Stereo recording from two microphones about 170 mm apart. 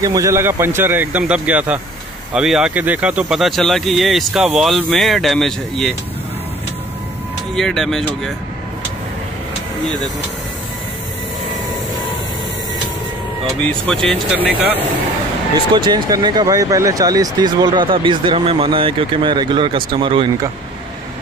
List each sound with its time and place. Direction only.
0.0 s speech: 20° right (ahead or behind); by 5.9 s centre (ahead or behind)
7.5 s speech: centre (ahead or behind)
9.8 s speech: centre (ahead or behind)
13.7 s speech: 5° left (ahead or behind)
15.7 s speech: 25° right (ahead or behind)